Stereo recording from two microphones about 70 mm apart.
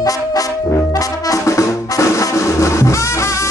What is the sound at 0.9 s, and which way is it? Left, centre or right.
Brass instrument, left.